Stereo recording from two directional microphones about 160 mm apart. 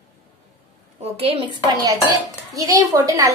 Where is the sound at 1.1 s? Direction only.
35° right (ahead or behind).